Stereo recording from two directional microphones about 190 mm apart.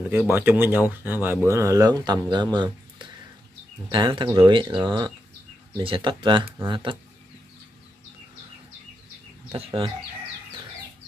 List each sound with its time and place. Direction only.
0.0 s speech: 10° right (ahead or behind); by 7.0 s 25° right (ahead or behind)
9.7 s speech: 30° right (ahead or behind)